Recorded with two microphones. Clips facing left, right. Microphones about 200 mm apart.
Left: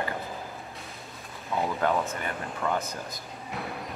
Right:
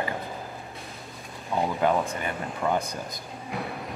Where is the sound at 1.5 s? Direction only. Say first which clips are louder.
Right 2 dB; 15° right (ahead or behind).